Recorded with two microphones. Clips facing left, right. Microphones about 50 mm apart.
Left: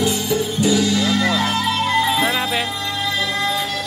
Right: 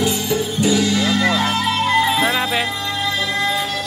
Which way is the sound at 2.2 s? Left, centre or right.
Right.